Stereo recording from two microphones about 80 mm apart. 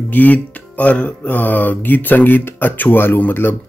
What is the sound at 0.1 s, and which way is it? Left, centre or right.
A man's voice, left.